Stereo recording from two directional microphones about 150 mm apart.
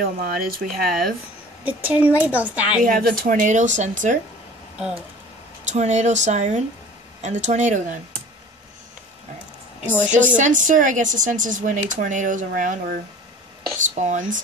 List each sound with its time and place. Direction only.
0.0 s speech: 75° right (ahead or behind)
1.6 s a woman's voice: 10° right (ahead or behind)
2.8 s speech: 70° right (ahead or behind)
5.7 s speech: 50° right (ahead or behind)
10.3 s speech: 60° right (ahead or behind)